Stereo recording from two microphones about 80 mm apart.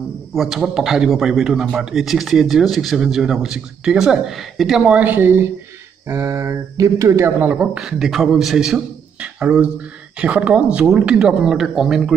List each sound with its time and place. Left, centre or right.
0.3 s speech: centre
4.8 s a woman's voice: centre; by 7.2 s right
7.2 s a woman's voice: right
7.8 s a man's voice: centre